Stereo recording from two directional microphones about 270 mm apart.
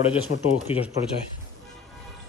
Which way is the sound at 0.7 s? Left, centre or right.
Left.